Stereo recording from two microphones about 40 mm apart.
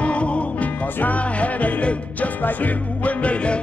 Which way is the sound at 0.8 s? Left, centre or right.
Left.